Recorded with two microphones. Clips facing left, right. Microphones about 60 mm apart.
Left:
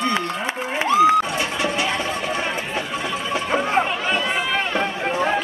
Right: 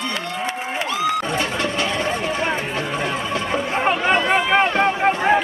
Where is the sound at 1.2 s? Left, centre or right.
Centre.